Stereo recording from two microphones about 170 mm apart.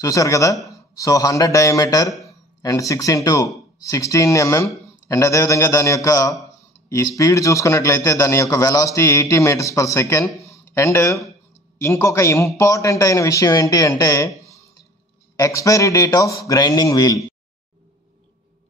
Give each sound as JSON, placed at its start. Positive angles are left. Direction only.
{"t": 0.0, "sound": "a man's voice", "side_deg": 20}
{"t": 10.4, "sound": "a sound", "side_deg": 15}
{"t": 11.8, "sound": "a man's voice", "side_deg": 15}
{"t": 15.3, "sound": "a man's voice", "side_deg": 20}